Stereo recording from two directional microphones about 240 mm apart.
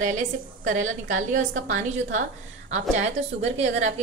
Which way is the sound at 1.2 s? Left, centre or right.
Right.